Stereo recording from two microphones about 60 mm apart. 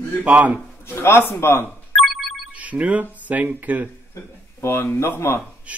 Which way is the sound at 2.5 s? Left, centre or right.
Right.